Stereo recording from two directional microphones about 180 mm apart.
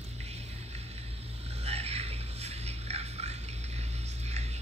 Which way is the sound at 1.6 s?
35° right (ahead or behind).